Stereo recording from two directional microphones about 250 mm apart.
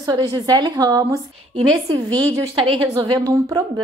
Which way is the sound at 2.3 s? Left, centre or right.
Right.